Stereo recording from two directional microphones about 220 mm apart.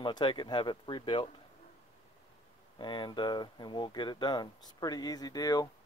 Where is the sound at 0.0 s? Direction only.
20° left (ahead or behind).